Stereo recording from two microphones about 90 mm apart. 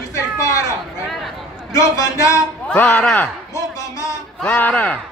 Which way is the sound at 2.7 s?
20° left (ahead or behind).